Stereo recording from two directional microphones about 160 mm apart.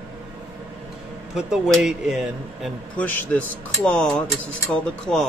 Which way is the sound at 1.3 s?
5° right (ahead or behind).